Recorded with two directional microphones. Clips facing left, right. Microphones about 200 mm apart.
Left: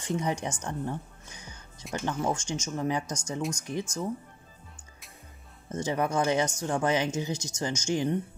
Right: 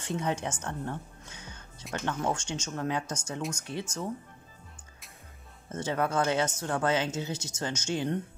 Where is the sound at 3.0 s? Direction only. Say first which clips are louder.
Left 1 dB; 5° right (ahead or behind).